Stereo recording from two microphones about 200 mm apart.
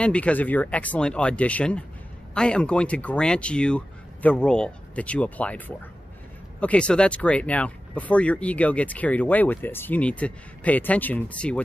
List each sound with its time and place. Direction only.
0.0 s speech: 5° left (ahead or behind)